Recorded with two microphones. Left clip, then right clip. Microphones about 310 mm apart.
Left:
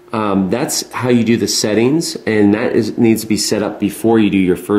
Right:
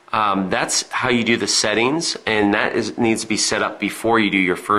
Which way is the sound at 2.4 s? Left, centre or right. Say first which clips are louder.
Left 5 dB; right.